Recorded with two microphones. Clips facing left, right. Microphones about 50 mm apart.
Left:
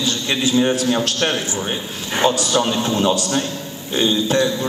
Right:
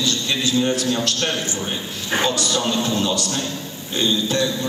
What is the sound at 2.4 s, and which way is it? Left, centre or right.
A man's voice, left.